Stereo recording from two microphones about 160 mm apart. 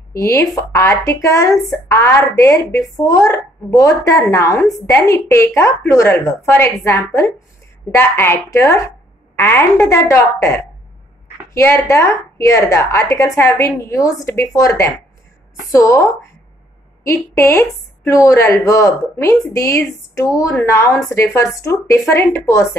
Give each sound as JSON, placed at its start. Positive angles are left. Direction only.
{"t": 0.1, "sound": "a woman's voice", "side_deg": 20}